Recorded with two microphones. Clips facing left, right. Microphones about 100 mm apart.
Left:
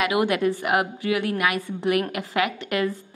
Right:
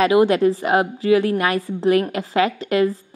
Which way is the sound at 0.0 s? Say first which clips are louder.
Right 7 dB; 30° right (ahead or behind).